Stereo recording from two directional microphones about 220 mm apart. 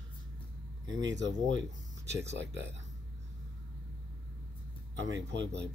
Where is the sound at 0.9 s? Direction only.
55° right (ahead or behind).